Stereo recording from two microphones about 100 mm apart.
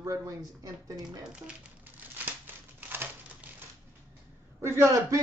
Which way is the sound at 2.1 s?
20° right (ahead or behind).